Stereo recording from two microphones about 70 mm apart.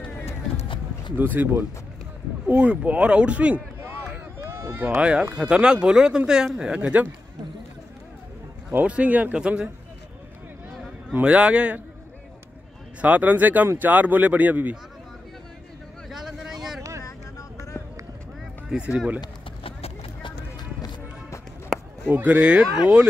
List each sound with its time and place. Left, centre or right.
1.1 s speech: right
2.4 s speech: right
4.7 s speech: right
8.8 s speech: centre
11.2 s speech: centre
13.0 s speech: right
16.1 s vehicle: centre
18.7 s speech: centre
21.7 s a sound: centre
22.1 s speech: right